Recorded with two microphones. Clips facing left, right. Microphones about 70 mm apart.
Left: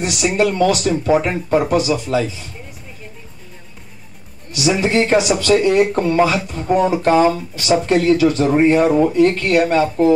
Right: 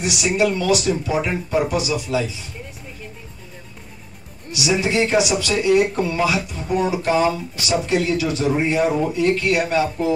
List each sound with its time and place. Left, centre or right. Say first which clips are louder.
0.0 s speech: left 2 dB; left
4.5 s speech: left 3 dB; left